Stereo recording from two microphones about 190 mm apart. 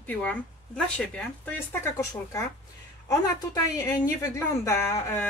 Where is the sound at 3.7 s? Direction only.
20° left (ahead or behind).